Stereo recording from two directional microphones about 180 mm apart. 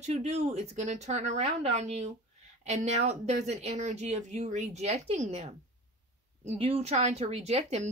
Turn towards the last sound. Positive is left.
turn(degrees=-35)  # may be behind; listen again after turning